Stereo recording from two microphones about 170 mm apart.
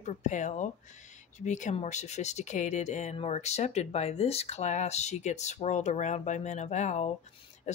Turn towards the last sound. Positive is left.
turn(degrees=40)  # may be behind; listen again after turning